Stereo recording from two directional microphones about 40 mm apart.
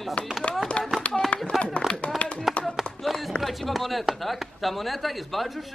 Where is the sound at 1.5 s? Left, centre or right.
Centre.